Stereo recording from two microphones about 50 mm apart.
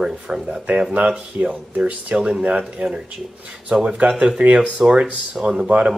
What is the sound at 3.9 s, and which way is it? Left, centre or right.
Speech, centre.